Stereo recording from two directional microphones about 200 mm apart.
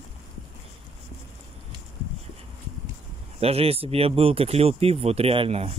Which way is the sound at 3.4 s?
30° right (ahead or behind).